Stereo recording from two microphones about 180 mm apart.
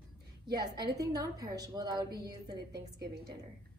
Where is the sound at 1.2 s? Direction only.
20° right (ahead or behind).